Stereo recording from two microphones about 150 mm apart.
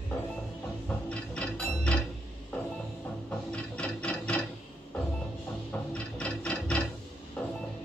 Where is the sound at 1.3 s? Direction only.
10° left (ahead or behind).